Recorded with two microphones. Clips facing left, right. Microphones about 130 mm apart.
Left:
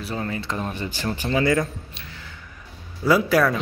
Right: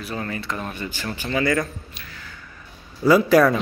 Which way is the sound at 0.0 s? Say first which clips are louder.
Left 1 dB; 20° left (ahead or behind).